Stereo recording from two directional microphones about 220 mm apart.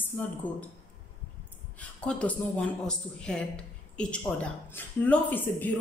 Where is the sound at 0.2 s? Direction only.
5° left (ahead or behind).